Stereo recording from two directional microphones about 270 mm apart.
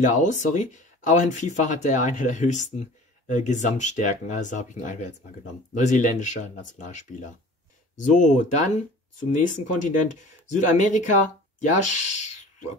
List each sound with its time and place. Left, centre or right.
0.1 s speech: left